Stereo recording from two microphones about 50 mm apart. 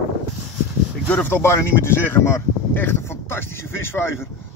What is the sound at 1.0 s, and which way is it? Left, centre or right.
Speech, left.